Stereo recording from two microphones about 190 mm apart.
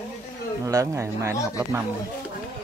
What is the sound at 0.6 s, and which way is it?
Speech, 15° right (ahead or behind).